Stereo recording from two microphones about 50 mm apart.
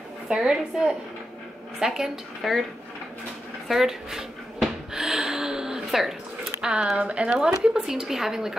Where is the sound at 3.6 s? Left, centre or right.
Centre.